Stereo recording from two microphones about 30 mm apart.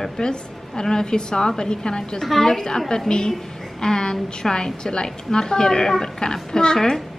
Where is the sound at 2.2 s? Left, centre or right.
Centre.